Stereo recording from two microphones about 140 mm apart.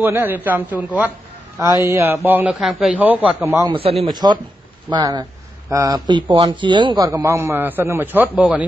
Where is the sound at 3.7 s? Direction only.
45° right (ahead or behind).